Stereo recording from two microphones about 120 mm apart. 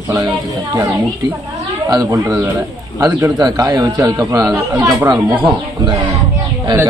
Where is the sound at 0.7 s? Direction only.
30° right (ahead or behind).